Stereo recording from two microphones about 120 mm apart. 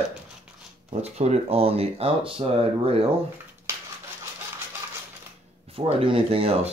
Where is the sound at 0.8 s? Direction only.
60° right (ahead or behind).